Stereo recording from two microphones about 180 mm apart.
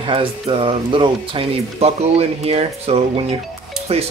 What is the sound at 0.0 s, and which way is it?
Speech, 30° right (ahead or behind).